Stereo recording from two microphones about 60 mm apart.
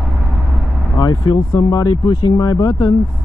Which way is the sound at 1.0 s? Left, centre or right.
Left.